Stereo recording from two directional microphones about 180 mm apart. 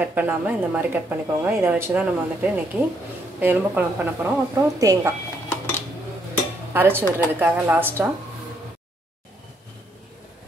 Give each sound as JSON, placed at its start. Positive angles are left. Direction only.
{"t": 0.0, "sound": "speech", "side_deg": -10}
{"t": 6.7, "sound": "speech", "side_deg": -10}